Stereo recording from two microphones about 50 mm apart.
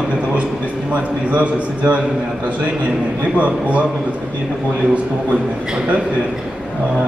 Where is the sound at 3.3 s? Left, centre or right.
Right.